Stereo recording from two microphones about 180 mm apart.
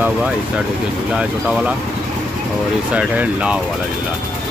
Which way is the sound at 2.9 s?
5° right (ahead or behind).